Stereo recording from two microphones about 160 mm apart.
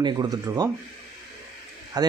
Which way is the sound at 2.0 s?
25° right (ahead or behind).